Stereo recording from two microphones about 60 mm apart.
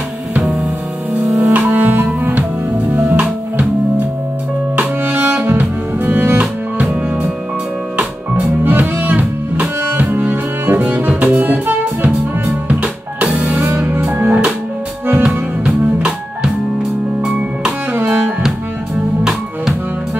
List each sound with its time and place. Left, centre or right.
1.3 s music: right
5.0 s music: right
6.4 s music: right
8.6 s music: right
12.6 s music: right
13.6 s music: right
15.2 s music: centre
17.2 s music: centre
17.9 s music: right